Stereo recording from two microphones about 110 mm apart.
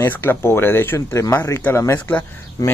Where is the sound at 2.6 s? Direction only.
35° left (ahead or behind).